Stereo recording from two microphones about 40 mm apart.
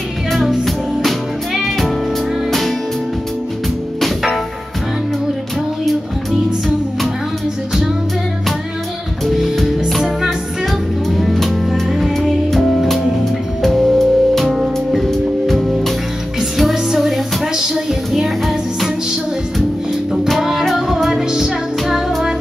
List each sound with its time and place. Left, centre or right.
0.3 s music: centre
9.2 s music: centre
11.1 s music: centre
15.0 s music: centre
17.0 s music: centre
20.3 s music: centre
21.1 s music: centre